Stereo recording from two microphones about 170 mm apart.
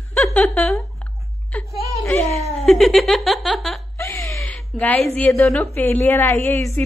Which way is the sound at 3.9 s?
15° left (ahead or behind).